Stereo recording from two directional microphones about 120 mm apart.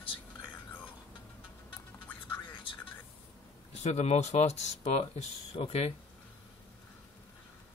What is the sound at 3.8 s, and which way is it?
Speech, 65° left (ahead or behind).